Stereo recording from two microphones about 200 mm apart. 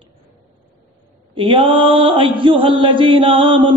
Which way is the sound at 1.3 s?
25° right (ahead or behind).